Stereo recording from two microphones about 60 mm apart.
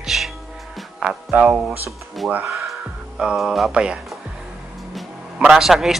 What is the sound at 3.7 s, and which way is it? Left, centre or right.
Speech, centre.